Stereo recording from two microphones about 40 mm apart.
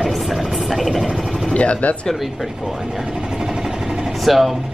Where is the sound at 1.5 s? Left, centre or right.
Left.